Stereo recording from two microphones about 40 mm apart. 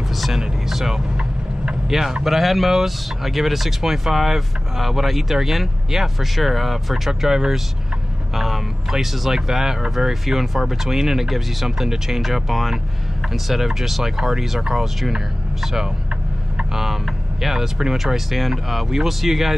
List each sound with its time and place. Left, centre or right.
0.1 s vehicle: centre
0.4 s speech: centre
7.1 s speech: centre